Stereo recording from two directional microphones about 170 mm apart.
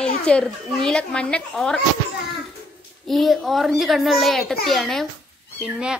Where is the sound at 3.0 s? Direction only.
Centre (ahead or behind).